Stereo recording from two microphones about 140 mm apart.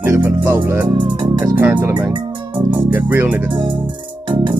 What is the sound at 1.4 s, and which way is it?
Music, 15° right (ahead or behind).